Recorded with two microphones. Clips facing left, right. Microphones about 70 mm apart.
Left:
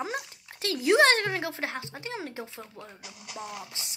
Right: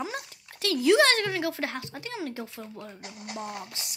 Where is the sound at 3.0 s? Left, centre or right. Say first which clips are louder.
Right 3 dB; right.